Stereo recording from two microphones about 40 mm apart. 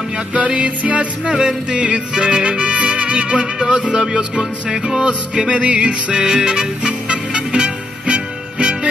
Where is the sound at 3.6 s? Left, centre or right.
Centre.